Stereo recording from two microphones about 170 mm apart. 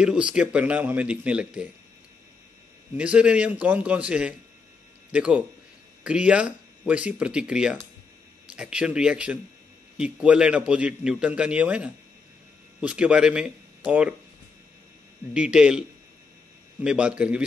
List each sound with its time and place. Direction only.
0.0 s a man's voice: 5° right (ahead or behind)
3.0 s a man's voice: 5° right (ahead or behind)
15.3 s speech: 5° right (ahead or behind)
16.8 s a man's voice: 5° right (ahead or behind)